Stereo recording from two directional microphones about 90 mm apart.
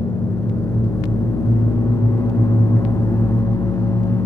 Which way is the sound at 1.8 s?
35° left (ahead or behind).